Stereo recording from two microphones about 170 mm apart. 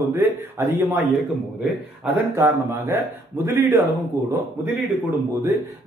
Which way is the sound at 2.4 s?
15° right (ahead or behind).